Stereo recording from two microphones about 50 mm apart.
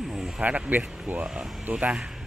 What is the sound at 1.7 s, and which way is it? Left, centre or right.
Speech, right.